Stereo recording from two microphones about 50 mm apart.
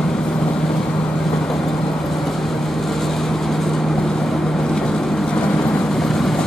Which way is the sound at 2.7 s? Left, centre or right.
Centre.